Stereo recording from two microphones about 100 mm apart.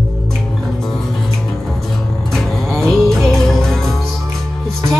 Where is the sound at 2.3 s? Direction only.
Centre (ahead or behind).